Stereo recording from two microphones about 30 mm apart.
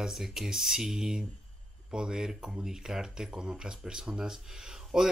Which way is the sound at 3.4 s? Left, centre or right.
Right.